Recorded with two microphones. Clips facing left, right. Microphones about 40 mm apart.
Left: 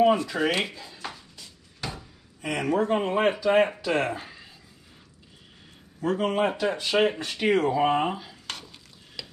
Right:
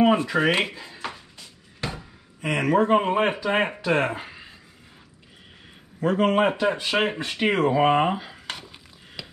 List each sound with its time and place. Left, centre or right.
0.0 s speech: right
1.8 s a sound: right
2.6 s a man's voice: right
3.0 s speech: right
3.5 s speech: right
6.1 s a man's voice: right
6.4 s speech: right
9.2 s a sound: centre